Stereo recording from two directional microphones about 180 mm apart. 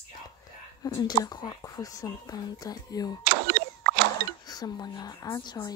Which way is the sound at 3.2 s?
65° right (ahead or behind).